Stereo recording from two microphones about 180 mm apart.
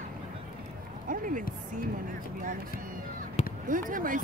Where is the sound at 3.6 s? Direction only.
50° right (ahead or behind).